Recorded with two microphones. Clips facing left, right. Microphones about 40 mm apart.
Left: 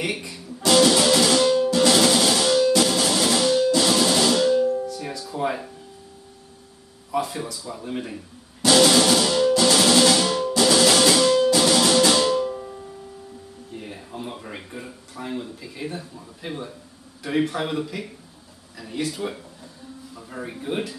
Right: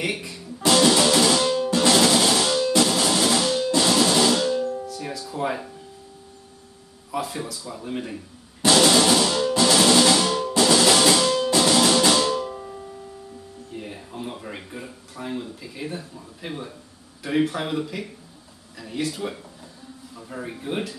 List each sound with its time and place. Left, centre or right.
0.0 s speech: centre
0.7 s music: centre
7.1 s speech: centre
8.6 s music: centre
13.7 s speech: centre